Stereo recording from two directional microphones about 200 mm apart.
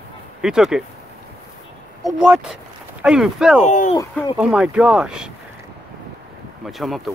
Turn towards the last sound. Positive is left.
turn(degrees=0)  # may be behind; listen again after turning